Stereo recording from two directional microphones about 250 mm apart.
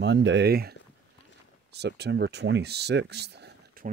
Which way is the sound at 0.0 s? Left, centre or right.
Right.